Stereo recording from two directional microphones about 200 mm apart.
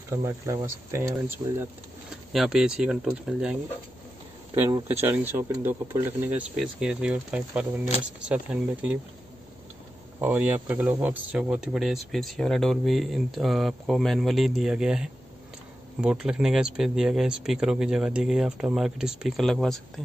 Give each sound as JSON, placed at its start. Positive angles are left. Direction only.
{"t": 0.1, "sound": "speech", "side_deg": -15}
{"t": 2.3, "sound": "speech", "side_deg": 0}
{"t": 4.6, "sound": "speech", "side_deg": -15}
{"t": 10.2, "sound": "speech", "side_deg": -10}